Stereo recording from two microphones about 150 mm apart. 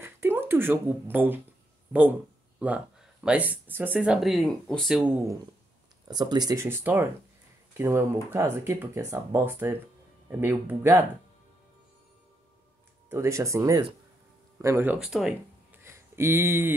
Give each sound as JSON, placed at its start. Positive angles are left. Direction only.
{"t": 0.0, "sound": "speech", "side_deg": -15}
{"t": 3.3, "sound": "speech", "side_deg": -10}
{"t": 5.1, "sound": "speech", "side_deg": -20}
{"t": 13.1, "sound": "speech", "side_deg": -20}
{"t": 15.7, "sound": "a sound", "side_deg": -15}